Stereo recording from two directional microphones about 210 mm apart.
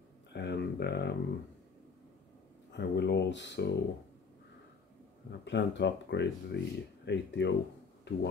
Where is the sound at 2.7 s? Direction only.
55° left (ahead or behind).